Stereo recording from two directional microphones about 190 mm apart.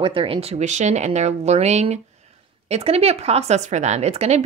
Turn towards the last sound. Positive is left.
turn(degrees=-35)  # may be behind; listen again after turning